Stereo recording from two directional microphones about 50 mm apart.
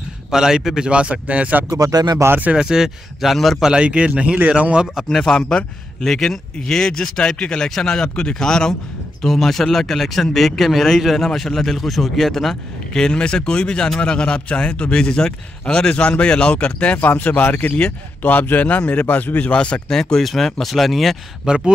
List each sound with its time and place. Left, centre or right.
0.3 s a man's voice: centre
2.5 s speech: centre
3.8 s speech: right
5.1 s a man's voice: centre; by 19.5 s left
19.5 s a man's voice: left; by 21.2 s centre
21.5 s a man's voice: centre